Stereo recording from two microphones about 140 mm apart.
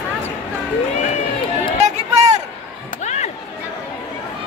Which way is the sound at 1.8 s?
55° right (ahead or behind).